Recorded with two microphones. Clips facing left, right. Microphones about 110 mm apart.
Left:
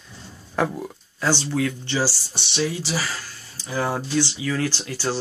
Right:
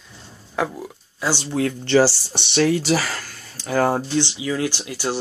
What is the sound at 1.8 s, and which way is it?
Speech, 65° right (ahead or behind).